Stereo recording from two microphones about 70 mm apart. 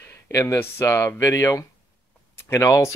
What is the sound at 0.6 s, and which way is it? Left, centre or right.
Speech, left.